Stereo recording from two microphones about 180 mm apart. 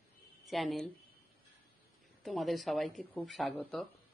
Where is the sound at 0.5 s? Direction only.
Centre (ahead or behind).